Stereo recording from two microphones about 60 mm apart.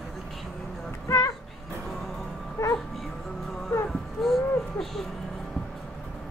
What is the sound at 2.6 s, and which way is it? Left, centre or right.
Speech, left.